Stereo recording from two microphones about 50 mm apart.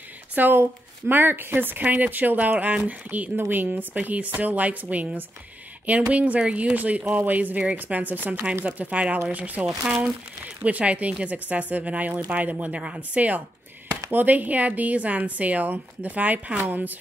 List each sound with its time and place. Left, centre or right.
0.3 s a woman's voice: right
3.3 s speech: right
3.7 s a woman's voice: right
9.7 s speech: centre
10.4 s a woman's voice: right